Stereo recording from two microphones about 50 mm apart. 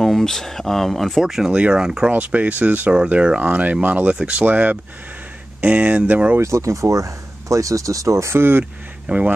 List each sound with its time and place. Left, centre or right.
0.0 s speech: centre
1.2 s speech: centre
4.5 s speech: right
6.4 s speech: right
8.4 s speech: right
9.1 s speech: right